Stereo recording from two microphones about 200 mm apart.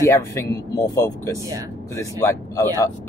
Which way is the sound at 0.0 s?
15° left (ahead or behind).